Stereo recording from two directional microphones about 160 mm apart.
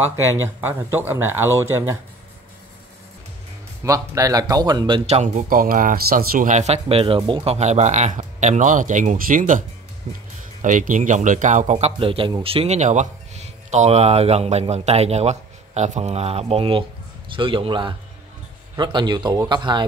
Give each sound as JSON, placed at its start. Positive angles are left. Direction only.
{"t": 0.6, "sound": "speech", "side_deg": -15}
{"t": 3.8, "sound": "speech", "side_deg": -20}
{"t": 5.0, "sound": "a man's voice", "side_deg": -40}
{"t": 5.5, "sound": "a man's voice", "side_deg": -60}
{"t": 10.1, "sound": "a man's voice", "side_deg": -40}
{"t": 10.6, "sound": "a man's voice", "side_deg": -55}